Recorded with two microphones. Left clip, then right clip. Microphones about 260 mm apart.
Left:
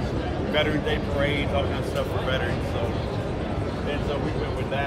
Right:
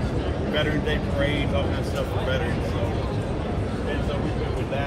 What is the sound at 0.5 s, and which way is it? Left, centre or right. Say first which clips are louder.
Speech: left 1 dB; centre.